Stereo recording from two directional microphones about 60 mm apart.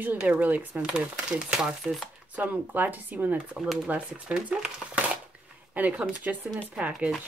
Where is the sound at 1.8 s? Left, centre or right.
Centre.